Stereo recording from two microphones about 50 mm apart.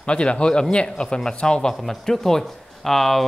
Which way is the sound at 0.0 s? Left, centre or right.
Left.